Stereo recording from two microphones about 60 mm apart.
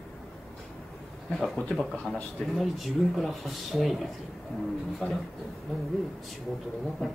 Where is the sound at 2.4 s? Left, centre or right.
Centre.